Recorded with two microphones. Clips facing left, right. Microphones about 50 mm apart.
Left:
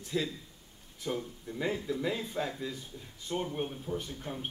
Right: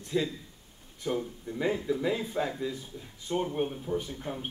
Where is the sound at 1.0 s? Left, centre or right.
Centre.